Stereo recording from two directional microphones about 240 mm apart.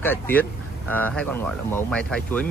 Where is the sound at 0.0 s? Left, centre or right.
Centre.